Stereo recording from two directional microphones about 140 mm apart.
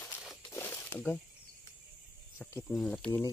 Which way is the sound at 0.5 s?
15° left (ahead or behind).